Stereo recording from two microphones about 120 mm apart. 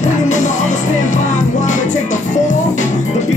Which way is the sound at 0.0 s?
90° left.